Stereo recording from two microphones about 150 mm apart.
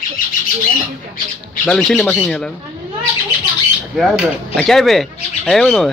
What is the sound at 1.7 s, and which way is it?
Speech, 5° left (ahead or behind).